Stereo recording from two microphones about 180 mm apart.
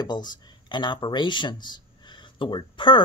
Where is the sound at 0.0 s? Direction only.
25° left (ahead or behind).